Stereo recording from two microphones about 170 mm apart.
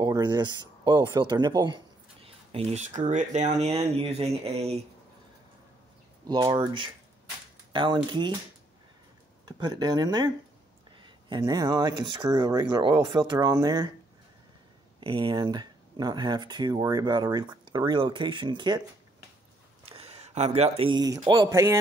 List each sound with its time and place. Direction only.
0.0 s speech: 25° right (ahead or behind)
2.2 s speech: 35° right (ahead or behind)
6.2 s speech: 25° right (ahead or behind)
9.6 s speech: 25° right (ahead or behind)
15.0 s speech: 30° right (ahead or behind)
19.9 s speech: 35° right (ahead or behind); by 21.7 s 15° right (ahead or behind)